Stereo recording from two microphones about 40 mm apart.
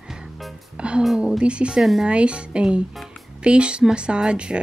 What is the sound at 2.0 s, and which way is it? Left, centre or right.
A woman's voice, right.